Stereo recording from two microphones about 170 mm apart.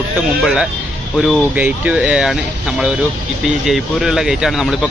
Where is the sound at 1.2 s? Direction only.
5° right (ahead or behind).